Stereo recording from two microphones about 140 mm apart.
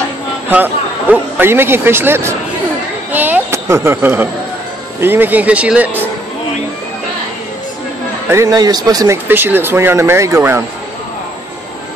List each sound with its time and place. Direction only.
1.1 s a man's voice: 15° right (ahead or behind)
3.1 s a sound: 10° right (ahead or behind)
5.0 s a man's voice: 15° right (ahead or behind)
8.3 s speech: 25° right (ahead or behind)